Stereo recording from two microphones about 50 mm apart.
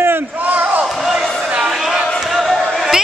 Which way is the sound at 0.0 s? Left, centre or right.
Right.